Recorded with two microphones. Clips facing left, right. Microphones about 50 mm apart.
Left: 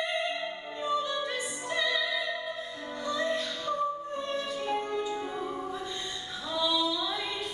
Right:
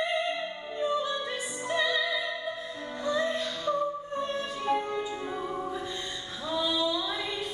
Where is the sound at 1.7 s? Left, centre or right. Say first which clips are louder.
Right 2 dB; centre.